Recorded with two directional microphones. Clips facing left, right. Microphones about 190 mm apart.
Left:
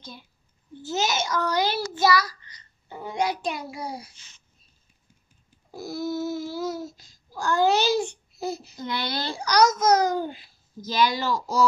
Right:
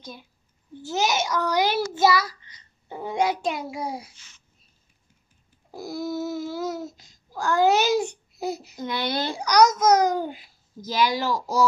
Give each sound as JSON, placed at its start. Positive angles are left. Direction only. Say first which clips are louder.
{"t": 0.8, "sound": "a child's voice", "louder": "right 2 dB", "side_deg": -15}
{"t": 5.7, "sound": "a child's voice", "louder": "even", "side_deg": -15}